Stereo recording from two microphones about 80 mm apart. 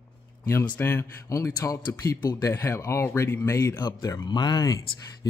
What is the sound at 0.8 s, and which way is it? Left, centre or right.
Speech, left.